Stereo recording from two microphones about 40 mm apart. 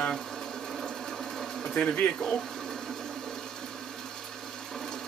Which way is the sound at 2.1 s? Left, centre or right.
Centre.